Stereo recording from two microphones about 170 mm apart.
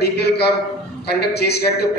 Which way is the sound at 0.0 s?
75° left (ahead or behind).